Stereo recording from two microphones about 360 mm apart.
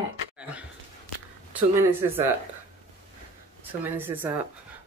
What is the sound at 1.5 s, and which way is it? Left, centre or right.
Speech, centre.